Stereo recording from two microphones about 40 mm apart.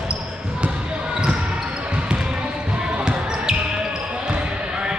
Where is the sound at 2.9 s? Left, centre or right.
Right.